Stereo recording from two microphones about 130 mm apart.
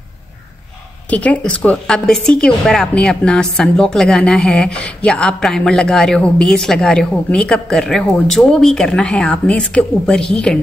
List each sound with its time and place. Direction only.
1.1 s a woman's voice: 10° left (ahead or behind)